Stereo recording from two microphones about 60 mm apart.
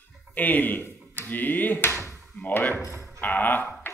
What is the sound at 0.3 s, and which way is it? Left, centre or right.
Speech, left.